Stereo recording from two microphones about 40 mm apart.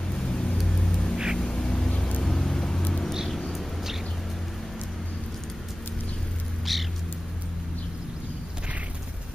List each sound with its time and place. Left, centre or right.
0.2 s vehicle: left
1.1 s music: centre
1.4 s vehicle: left
2.2 s vehicle: centre
3.3 s a sound: centre
6.6 s cat: centre